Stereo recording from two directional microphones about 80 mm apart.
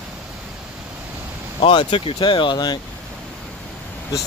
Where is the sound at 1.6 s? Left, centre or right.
Left.